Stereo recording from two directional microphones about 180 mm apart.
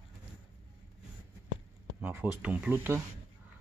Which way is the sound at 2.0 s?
10° right (ahead or behind).